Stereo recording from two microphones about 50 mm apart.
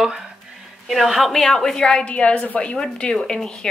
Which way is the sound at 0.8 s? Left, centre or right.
Centre.